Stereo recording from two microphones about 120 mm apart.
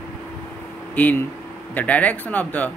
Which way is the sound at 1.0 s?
15° left (ahead or behind).